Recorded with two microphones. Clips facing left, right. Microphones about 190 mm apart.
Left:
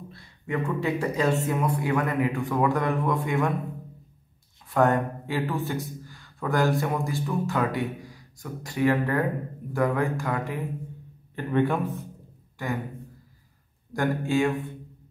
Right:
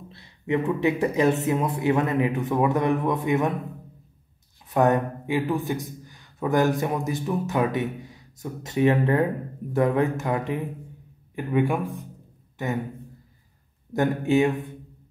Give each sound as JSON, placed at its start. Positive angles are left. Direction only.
{"t": 0.1, "sound": "speech", "side_deg": -20}
{"t": 4.6, "sound": "speech", "side_deg": -20}
{"t": 12.6, "sound": "speech", "side_deg": -20}
{"t": 13.9, "sound": "speech", "side_deg": -20}